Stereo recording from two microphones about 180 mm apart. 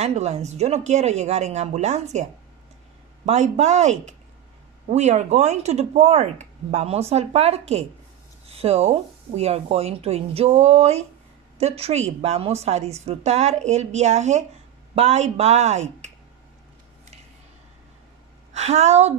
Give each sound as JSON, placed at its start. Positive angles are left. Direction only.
{"t": 0.0, "sound": "speech", "side_deg": -40}
{"t": 3.3, "sound": "a woman's voice", "side_deg": -40}
{"t": 18.5, "sound": "a woman's voice", "side_deg": -40}